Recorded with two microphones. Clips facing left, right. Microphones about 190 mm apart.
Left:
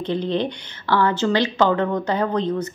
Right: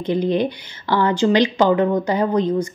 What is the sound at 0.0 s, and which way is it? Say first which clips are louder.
Speech: right 3 dB; 10° right (ahead or behind).